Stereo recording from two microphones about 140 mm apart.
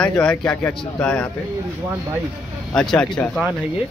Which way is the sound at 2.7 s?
5° left (ahead or behind).